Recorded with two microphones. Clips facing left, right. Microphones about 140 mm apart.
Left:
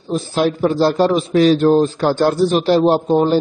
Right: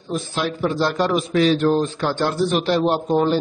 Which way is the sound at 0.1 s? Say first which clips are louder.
Left 7 dB; 35° left (ahead or behind).